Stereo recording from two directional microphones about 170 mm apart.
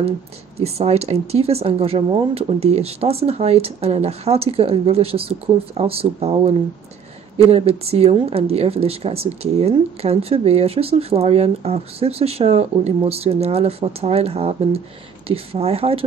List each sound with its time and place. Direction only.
0.6 s speech: 35° right (ahead or behind)